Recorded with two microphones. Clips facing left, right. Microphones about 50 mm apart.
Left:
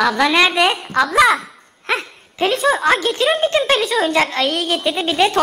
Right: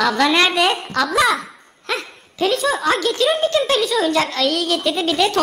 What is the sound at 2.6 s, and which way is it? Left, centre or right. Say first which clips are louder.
A woman's voice: left 3 dB; left.